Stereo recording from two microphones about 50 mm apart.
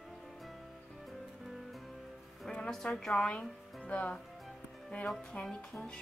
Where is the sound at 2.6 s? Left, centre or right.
Centre.